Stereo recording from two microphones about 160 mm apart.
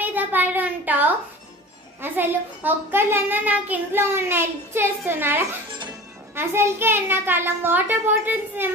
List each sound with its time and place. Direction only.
0.0 s a sound: 10° right (ahead or behind)
2.0 s a child's voice: 10° right (ahead or behind)
5.7 s music: 30° right (ahead or behind)
6.3 s a child's voice: 15° right (ahead or behind)